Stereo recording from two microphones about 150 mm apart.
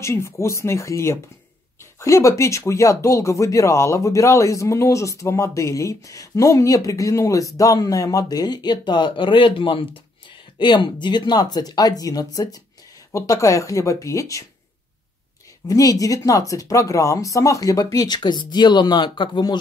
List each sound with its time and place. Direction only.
0.0 s speech: 20° left (ahead or behind)
15.6 s speech: 25° left (ahead or behind)